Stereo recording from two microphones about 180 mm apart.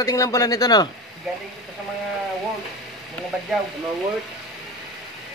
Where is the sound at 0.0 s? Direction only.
20° left (ahead or behind).